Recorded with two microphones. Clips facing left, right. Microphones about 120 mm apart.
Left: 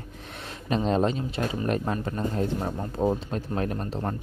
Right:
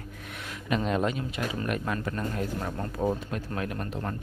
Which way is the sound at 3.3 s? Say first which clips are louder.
Left 4 dB; 35° left (ahead or behind).